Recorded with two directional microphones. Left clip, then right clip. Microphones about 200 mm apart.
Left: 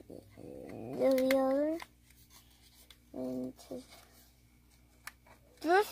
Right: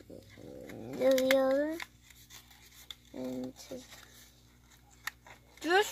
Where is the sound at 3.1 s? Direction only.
25° left (ahead or behind).